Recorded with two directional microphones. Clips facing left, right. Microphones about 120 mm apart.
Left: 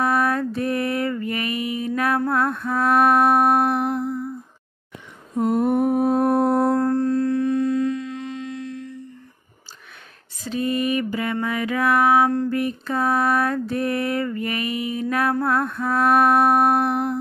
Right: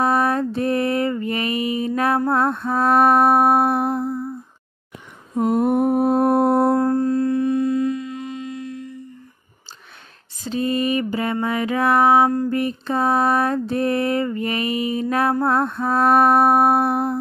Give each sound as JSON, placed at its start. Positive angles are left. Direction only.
{"t": 0.0, "sound": "mantra", "side_deg": -25}
{"t": 5.8, "sound": "mantra", "side_deg": -35}
{"t": 6.7, "sound": "music", "side_deg": -10}
{"t": 10.4, "sound": "mantra", "side_deg": -30}
{"t": 15.4, "sound": "lullaby", "side_deg": -25}